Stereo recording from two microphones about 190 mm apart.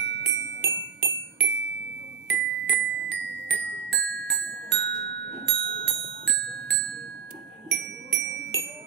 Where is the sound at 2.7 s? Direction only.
60° right (ahead or behind).